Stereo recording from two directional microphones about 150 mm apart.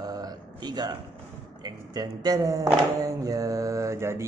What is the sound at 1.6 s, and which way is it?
Speech, 25° right (ahead or behind).